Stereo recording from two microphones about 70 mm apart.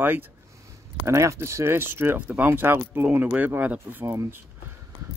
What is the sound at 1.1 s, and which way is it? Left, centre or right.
A man's voice, right.